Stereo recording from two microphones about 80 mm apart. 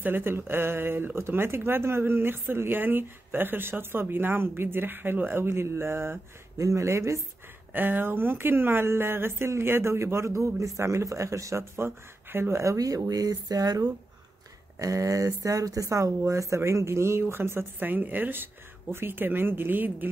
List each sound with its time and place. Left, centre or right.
0.0 s speech: right
7.7 s speech: right